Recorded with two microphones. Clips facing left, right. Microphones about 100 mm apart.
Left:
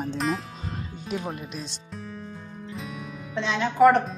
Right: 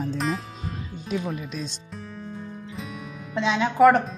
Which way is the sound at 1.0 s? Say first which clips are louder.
Right 3 dB; 10° left (ahead or behind).